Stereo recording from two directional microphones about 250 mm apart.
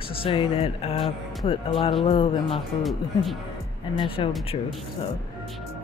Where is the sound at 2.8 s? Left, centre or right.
Centre.